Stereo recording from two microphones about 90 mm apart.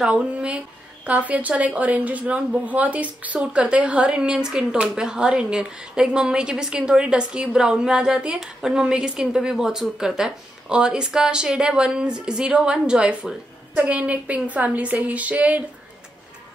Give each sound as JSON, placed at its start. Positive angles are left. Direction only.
{"t": 0.0, "sound": "a woman's voice", "side_deg": -10}